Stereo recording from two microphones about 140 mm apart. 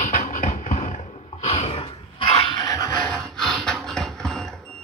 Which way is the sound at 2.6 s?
30° left (ahead or behind).